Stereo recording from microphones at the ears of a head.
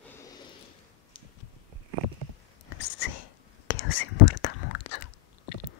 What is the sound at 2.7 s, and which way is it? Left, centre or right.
Whispering, left.